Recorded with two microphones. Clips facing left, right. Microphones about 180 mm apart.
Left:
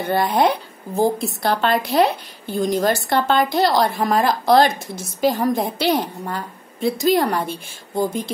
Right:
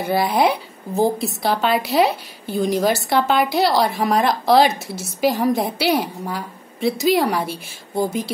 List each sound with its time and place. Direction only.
0.0 s a woman's voice: 5° right (ahead or behind)